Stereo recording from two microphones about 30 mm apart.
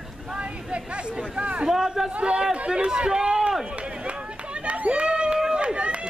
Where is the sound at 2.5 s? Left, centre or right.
Right.